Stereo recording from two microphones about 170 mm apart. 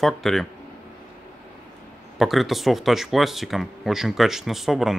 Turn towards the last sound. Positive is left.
turn(degrees=0)  # may be behind; listen again after turning